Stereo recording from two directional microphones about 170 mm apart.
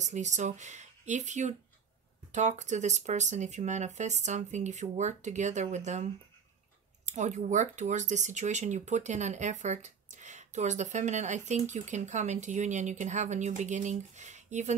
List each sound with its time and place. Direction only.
0.0 s speech: 45° right (ahead or behind)
7.1 s speech: 45° right (ahead or behind)